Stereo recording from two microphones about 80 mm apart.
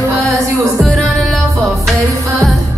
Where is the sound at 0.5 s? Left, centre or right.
Right.